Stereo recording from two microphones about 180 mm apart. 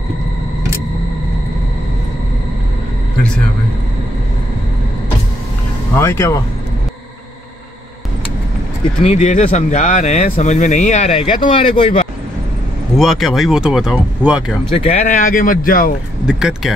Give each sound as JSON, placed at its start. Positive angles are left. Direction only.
{"t": 5.9, "sound": "speech", "side_deg": 15}
{"t": 9.0, "sound": "speech", "side_deg": 40}
{"t": 12.9, "sound": "speech", "side_deg": 0}
{"t": 14.8, "sound": "speech", "side_deg": 45}
{"t": 16.3, "sound": "speech", "side_deg": -5}